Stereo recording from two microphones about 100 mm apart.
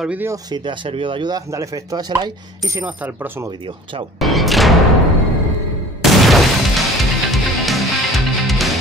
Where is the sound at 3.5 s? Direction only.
60° right (ahead or behind).